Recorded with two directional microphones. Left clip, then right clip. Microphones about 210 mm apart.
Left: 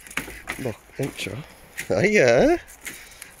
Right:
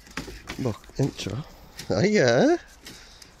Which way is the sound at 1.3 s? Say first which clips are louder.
Left 1 dB; 15° right (ahead or behind).